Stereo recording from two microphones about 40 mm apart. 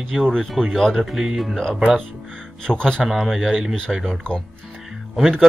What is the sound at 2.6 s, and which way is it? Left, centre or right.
Speech, centre.